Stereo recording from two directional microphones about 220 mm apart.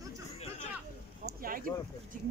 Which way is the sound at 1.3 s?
40° right (ahead or behind).